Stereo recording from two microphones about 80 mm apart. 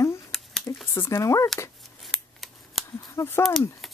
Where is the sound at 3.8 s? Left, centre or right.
Centre.